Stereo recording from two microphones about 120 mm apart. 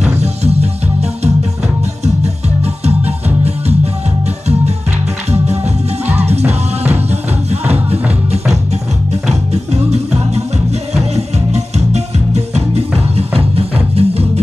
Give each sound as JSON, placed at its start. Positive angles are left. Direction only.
{"t": 0.0, "sound": "music", "side_deg": -65}
{"t": 2.0, "sound": "music", "side_deg": -65}
{"t": 5.3, "sound": "music", "side_deg": -65}